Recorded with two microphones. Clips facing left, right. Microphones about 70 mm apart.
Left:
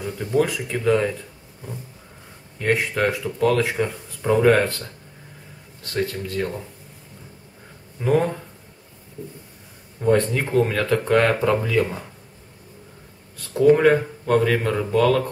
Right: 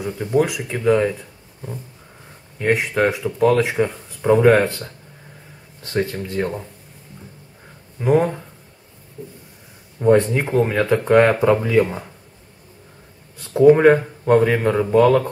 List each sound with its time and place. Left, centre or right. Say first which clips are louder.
0.0 s speech: right 2 dB; centre
2.6 s speech: right 3 dB; centre
8.0 s speech: right 3 dB; centre
10.0 s speech: right 4 dB; centre
13.5 s speech: right 4 dB; right